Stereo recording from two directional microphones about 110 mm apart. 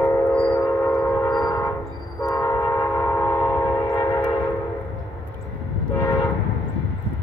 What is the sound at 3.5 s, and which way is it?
Train, 35° left (ahead or behind).